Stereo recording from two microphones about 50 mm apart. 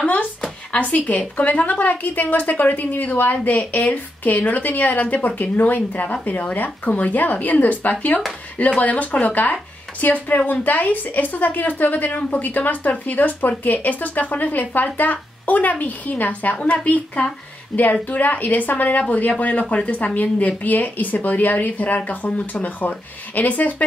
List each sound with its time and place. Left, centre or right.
0.0 s speech: left